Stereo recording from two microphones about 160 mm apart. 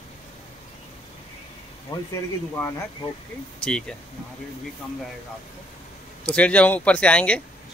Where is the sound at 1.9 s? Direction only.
25° left (ahead or behind).